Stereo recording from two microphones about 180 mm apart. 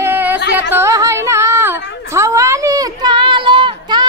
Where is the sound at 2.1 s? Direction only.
15° right (ahead or behind).